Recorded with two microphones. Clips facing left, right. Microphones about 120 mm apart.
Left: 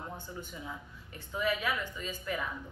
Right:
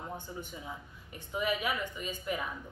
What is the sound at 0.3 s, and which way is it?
A woman's voice, 15° right (ahead or behind).